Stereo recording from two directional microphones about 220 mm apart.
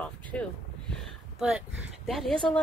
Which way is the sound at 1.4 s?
5° right (ahead or behind).